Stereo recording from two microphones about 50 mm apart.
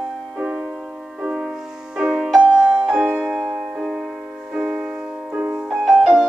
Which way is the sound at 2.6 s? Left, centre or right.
Right.